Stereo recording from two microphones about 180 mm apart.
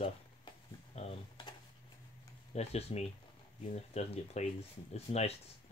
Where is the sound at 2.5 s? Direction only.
35° left (ahead or behind).